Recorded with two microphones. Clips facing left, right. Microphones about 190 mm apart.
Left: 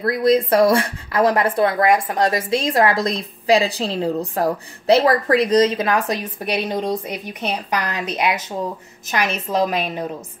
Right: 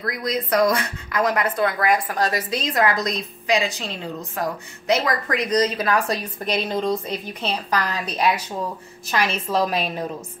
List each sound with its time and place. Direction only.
0.0 s speech: 30° left (ahead or behind)
9.1 s a woman's voice: 15° left (ahead or behind)